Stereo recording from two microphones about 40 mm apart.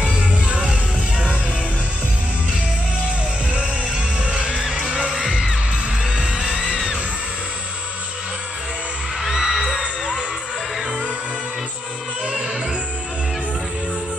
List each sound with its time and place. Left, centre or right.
0.7 s music: right
3.5 s music: right
5.2 s music: centre
6.3 s music: centre
9.3 s music: centre